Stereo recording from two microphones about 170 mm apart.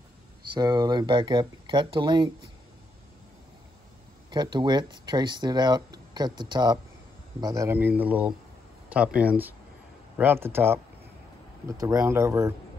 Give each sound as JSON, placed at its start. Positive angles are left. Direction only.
{"t": 0.6, "sound": "speech", "side_deg": -25}
{"t": 4.3, "sound": "speech", "side_deg": -25}